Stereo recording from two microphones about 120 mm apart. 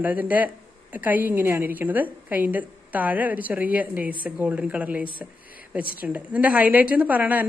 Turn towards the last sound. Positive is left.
turn(degrees=-15)  # may be behind; listen again after turning